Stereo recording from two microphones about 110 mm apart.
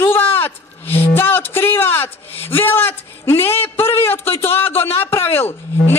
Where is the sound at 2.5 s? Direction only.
20° left (ahead or behind).